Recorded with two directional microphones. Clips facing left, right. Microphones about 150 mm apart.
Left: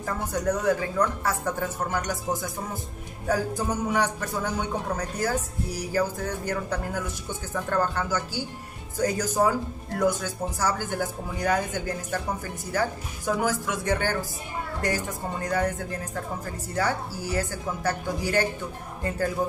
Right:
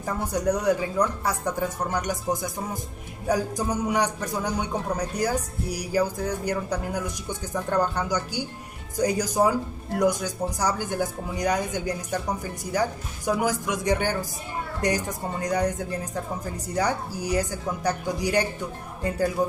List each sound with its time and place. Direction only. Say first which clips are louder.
0.0 s a man's voice: right 2 dB; 15° right (ahead or behind)